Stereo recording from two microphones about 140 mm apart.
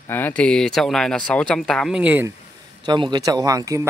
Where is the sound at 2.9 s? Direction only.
30° right (ahead or behind).